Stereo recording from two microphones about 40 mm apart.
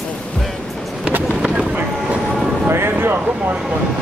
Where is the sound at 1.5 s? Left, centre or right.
Right.